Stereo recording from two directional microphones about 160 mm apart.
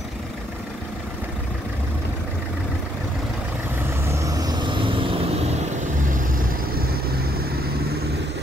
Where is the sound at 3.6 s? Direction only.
15° right (ahead or behind).